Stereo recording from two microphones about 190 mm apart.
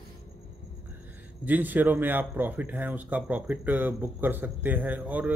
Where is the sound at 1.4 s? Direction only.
10° right (ahead or behind).